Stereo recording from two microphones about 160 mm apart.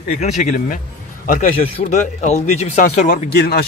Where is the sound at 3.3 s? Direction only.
90° left.